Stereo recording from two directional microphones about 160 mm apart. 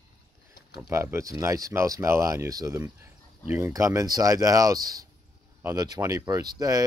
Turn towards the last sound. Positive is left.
turn(degrees=-20)  # may be behind; listen again after turning